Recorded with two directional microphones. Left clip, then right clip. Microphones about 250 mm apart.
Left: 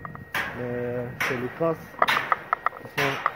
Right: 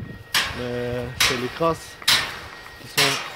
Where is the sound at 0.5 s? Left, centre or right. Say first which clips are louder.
Right 2 dB; right.